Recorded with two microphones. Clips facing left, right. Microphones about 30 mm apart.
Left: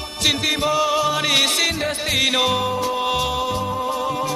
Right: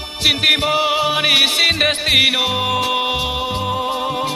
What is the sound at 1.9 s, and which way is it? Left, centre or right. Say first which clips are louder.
Music: right 7 dB; right.